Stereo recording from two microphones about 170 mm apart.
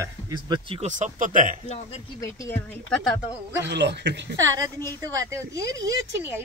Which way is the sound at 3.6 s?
90° right.